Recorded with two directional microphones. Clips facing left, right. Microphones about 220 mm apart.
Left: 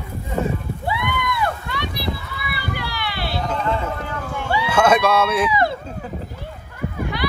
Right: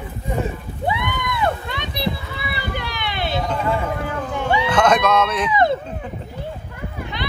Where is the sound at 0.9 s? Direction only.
20° right (ahead or behind).